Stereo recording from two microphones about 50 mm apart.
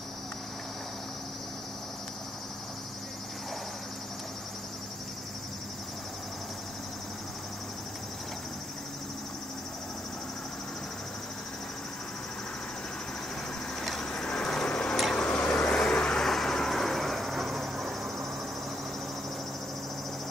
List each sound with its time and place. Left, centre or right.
13.7 s a sound: centre
15.1 s vehicle: centre
16.3 s vehicle: centre